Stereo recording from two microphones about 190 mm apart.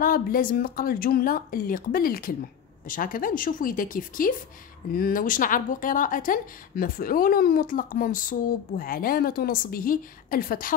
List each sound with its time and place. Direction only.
0.0 s a woman's voice: 50° left (ahead or behind)